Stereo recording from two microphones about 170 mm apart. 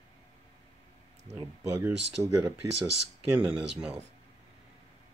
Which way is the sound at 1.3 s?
15° right (ahead or behind).